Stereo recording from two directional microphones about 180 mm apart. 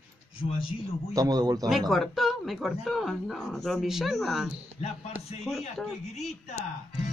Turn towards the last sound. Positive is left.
turn(degrees=40)  # may be behind; listen again after turning